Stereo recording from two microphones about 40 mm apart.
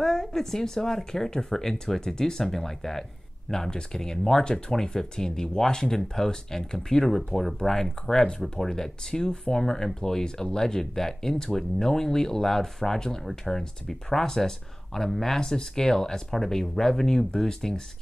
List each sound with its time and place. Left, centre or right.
0.0 s speech: centre